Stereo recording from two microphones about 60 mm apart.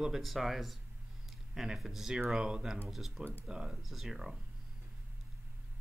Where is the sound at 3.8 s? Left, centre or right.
Centre.